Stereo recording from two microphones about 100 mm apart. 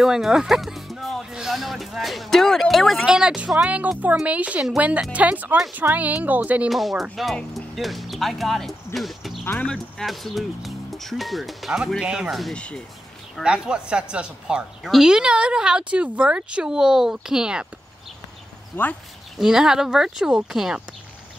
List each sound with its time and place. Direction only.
0.0 s a woman's voice: 5° right (ahead or behind)
6.7 s speech: centre (ahead or behind)
9.4 s speech: 15° left (ahead or behind)
9.9 s speech: centre (ahead or behind)
12.5 s speech: 10° left (ahead or behind)
13.4 s a woman's voice: 10° right (ahead or behind)
18.8 s speech: 20° left (ahead or behind)
19.3 s speech: 5° right (ahead or behind)